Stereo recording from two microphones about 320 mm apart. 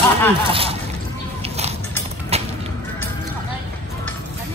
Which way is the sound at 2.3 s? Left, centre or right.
Centre.